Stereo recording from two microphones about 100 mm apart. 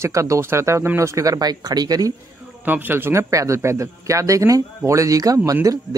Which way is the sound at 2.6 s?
20° right (ahead or behind).